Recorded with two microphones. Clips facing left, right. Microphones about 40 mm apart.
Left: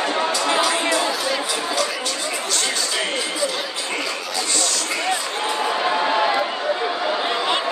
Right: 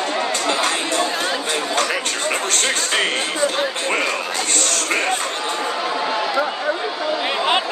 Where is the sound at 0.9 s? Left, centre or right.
Right.